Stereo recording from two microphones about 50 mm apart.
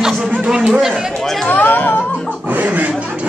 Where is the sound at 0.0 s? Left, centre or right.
Centre.